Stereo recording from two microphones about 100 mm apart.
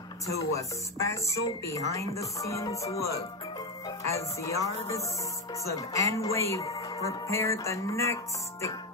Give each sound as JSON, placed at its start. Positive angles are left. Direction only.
{"t": 0.4, "sound": "speech", "side_deg": 30}
{"t": 5.7, "sound": "speech", "side_deg": 30}